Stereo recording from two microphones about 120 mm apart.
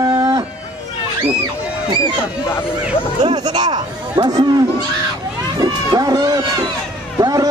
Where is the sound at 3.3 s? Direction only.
35° right (ahead or behind).